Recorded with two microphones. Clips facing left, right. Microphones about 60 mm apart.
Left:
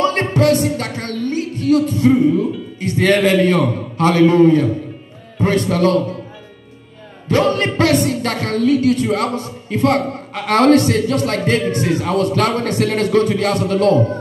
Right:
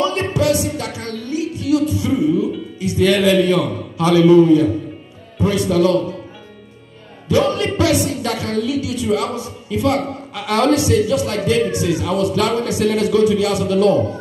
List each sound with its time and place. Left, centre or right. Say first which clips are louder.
0.0 s speech: left 3 dB; left
7.2 s speech: left 1 dB; left